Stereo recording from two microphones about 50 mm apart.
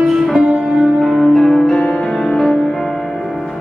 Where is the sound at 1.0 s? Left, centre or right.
Centre.